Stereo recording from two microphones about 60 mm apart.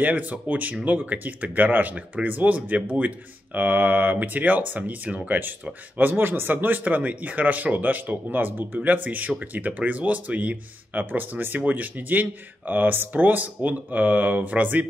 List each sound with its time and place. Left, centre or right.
0.0 s speech: right